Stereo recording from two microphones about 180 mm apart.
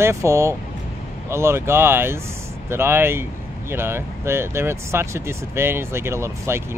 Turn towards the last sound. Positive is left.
turn(degrees=-15)  # may be behind; listen again after turning